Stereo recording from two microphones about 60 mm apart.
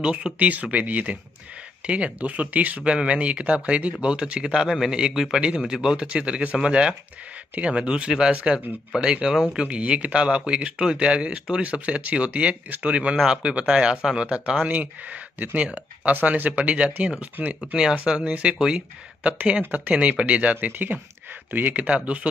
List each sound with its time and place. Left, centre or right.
0.0 s speech: centre
9.6 s speech: centre
15.3 s speech: right
19.6 s speech: right